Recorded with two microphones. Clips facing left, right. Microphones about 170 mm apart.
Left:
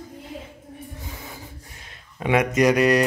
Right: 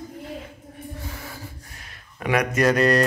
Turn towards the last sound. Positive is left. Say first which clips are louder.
# left 1 dB
turn(degrees=10)  # may be behind; listen again after turning